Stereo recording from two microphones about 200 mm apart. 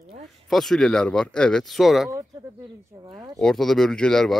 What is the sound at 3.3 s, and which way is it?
Speech, centre (ahead or behind).